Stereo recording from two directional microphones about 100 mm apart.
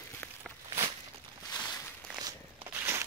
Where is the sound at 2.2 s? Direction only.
30° right (ahead or behind).